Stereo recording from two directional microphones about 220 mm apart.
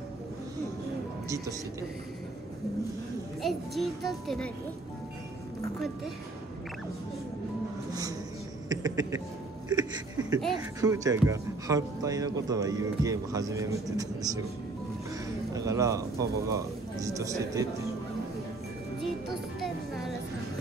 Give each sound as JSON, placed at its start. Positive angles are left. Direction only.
{"t": 3.4, "sound": "a child's voice", "side_deg": 0}
{"t": 8.6, "sound": "a sound", "side_deg": -15}
{"t": 9.7, "sound": "a man's voice", "side_deg": -15}
{"t": 15.5, "sound": "speech", "side_deg": -15}